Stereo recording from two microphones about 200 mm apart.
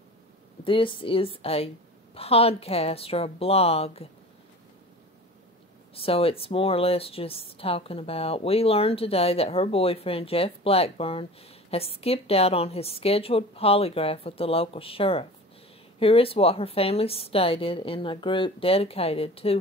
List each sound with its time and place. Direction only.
0.7 s speech: 25° left (ahead or behind)
5.9 s speech: 30° left (ahead or behind)